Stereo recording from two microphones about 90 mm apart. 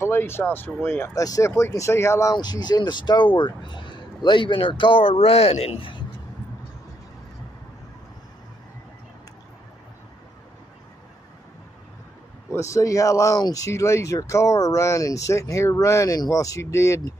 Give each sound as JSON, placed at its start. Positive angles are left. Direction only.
{"t": 0.0, "sound": "speech", "side_deg": 25}
{"t": 1.1, "sound": "speech", "side_deg": 40}
{"t": 2.3, "sound": "a man's voice", "side_deg": 50}
{"t": 12.5, "sound": "speech", "side_deg": 35}